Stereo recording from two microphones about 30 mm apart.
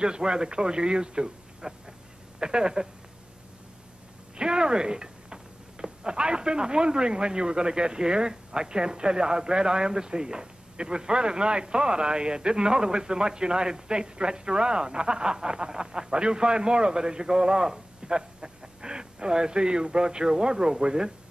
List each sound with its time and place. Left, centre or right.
0.0 s speech: right
4.4 s speech: right